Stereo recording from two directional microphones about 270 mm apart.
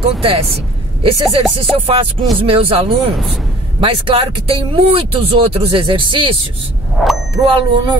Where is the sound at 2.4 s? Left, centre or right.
Right.